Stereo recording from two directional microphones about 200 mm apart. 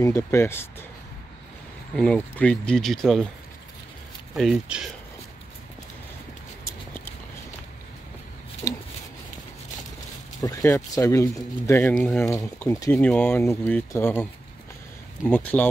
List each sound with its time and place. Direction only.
0.0 s speech: 15° left (ahead or behind)
2.0 s speech: 5° left (ahead or behind)
4.4 s speech: 5° right (ahead or behind)
8.6 s a sound: 20° left (ahead or behind)
10.4 s speech: 15° left (ahead or behind)
12.3 s speech: 15° left (ahead or behind)
12.9 s speech: 5° left (ahead or behind)
15.2 s speech: 10° left (ahead or behind)